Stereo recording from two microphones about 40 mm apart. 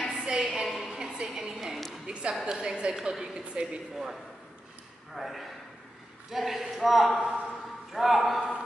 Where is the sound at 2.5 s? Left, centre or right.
Centre.